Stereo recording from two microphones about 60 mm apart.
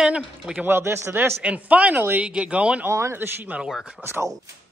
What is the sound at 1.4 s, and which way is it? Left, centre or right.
A man's voice, right.